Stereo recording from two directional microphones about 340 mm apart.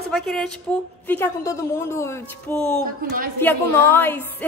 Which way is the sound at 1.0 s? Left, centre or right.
Centre.